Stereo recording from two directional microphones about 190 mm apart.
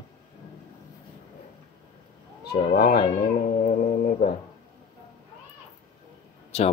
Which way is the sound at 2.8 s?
55° left (ahead or behind).